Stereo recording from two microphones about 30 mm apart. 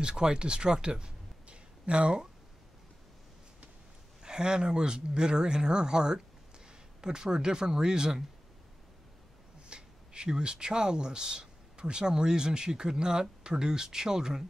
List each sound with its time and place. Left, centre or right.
0.0 s speech: right
4.2 s speech: right
9.7 s speech: right